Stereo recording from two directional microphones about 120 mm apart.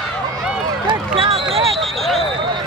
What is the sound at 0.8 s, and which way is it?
Run, 45° right (ahead or behind).